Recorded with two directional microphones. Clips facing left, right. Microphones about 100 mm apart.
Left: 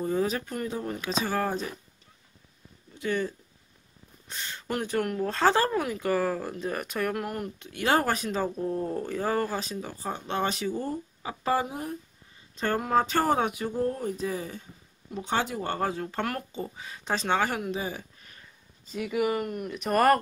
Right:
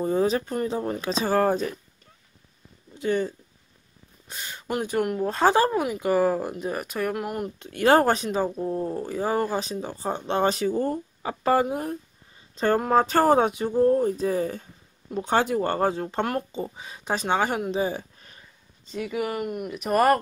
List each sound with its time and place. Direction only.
0.0 s speech: 30° right (ahead or behind); by 1.7 s 50° right (ahead or behind)
3.0 s speech: 25° right (ahead or behind)
4.3 s speech: 10° right (ahead or behind)
7.5 s speech: 40° right (ahead or behind)
8.3 s speech: 15° right (ahead or behind); by 12.0 s 55° right (ahead or behind)
12.5 s speech: 40° right (ahead or behind)
15.8 s speech: 30° right (ahead or behind)
18.9 s speech: centre (ahead or behind)